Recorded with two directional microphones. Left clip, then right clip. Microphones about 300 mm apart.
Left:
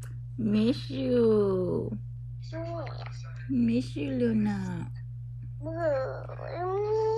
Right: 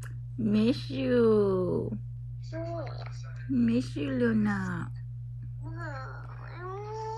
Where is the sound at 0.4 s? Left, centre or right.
Centre.